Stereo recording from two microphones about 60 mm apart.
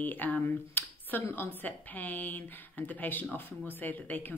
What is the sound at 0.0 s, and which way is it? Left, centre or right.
Speech, left.